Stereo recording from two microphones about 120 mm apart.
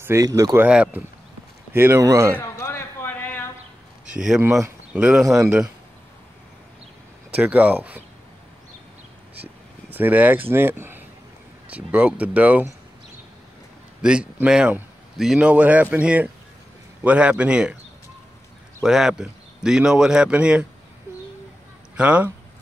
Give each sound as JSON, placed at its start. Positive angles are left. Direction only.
{"t": 0.0, "sound": "speech", "side_deg": -25}
{"t": 0.7, "sound": "a man's voice", "side_deg": -10}
{"t": 2.4, "sound": "a sound", "side_deg": 25}
{"t": 4.1, "sound": "speech", "side_deg": -10}
{"t": 7.3, "sound": "a man's voice", "side_deg": -10}
{"t": 9.4, "sound": "a man's voice", "side_deg": -15}
{"t": 14.0, "sound": "a man's voice", "side_deg": -10}
{"t": 18.8, "sound": "a man's voice", "side_deg": -5}
{"t": 21.9, "sound": "speech", "side_deg": -10}